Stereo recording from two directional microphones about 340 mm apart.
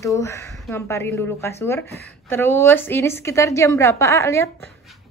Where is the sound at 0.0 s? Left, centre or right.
Centre.